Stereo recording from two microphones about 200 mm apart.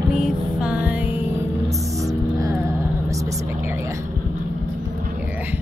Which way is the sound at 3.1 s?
15° right (ahead or behind).